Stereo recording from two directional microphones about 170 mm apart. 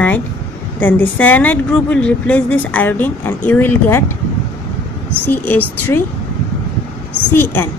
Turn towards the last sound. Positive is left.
turn(degrees=15)  # may be behind; listen again after turning